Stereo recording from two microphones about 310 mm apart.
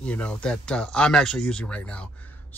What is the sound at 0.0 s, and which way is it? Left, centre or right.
Speech, centre.